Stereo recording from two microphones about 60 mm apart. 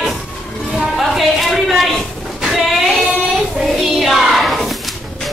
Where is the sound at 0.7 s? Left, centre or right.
Centre.